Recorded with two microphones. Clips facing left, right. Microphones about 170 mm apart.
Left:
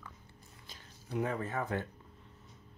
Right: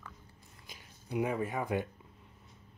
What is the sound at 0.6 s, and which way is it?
Speech, 15° right (ahead or behind).